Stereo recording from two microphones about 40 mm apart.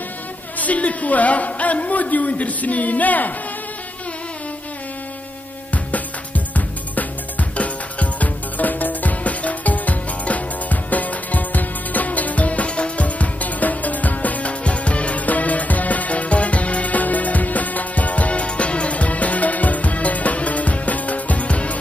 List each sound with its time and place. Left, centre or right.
0.6 s a woman's voice: left
5.7 s music: left